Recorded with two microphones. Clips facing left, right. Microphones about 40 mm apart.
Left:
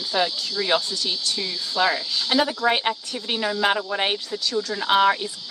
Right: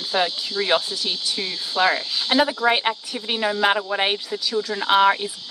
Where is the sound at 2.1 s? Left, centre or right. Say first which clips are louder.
Right 2 dB; centre.